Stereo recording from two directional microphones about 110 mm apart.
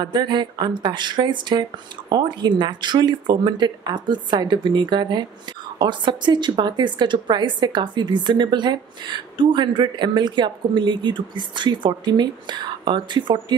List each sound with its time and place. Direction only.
0.0 s a woman's voice: 40° right (ahead or behind)